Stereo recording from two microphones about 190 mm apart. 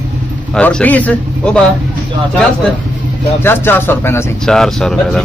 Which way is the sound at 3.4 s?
10° left (ahead or behind).